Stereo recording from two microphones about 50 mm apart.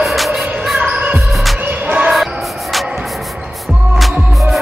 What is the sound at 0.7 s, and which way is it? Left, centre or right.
Basketball bounce, right.